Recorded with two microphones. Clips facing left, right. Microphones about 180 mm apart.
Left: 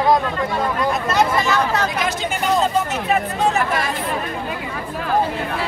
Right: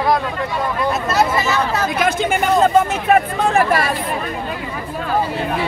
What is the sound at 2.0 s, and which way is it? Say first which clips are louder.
Speech: right 5 dB; 55° right (ahead or behind).